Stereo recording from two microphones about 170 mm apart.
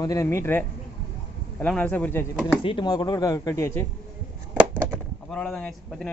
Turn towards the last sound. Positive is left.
turn(degrees=5)  # may be behind; listen again after turning